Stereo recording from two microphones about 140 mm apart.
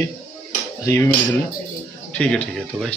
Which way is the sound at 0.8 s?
20° left (ahead or behind).